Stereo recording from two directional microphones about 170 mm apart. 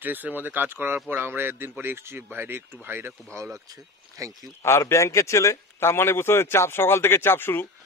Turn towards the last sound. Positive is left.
turn(degrees=15)  # may be behind; listen again after turning